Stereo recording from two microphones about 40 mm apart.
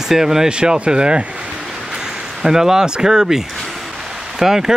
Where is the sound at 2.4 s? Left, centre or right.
Centre.